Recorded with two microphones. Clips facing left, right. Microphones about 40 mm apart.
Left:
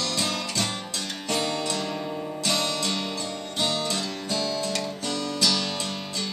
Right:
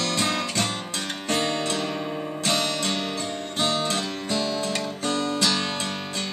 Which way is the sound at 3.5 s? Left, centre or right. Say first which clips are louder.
Right 2 dB; right.